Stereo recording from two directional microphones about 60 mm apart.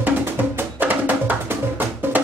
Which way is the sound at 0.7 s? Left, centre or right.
Right.